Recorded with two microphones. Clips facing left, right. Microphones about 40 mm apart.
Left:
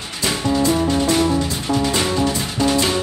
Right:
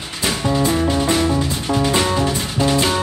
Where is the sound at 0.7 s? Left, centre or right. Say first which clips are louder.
Even; centre.